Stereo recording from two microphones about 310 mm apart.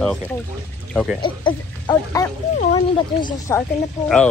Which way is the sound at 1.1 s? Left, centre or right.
Centre.